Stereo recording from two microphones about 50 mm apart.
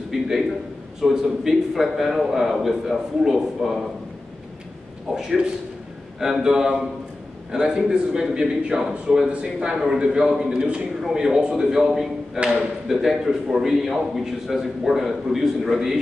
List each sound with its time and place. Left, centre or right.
0.1 s a sound: centre
1.1 s speech: centre
5.1 s a man's voice: centre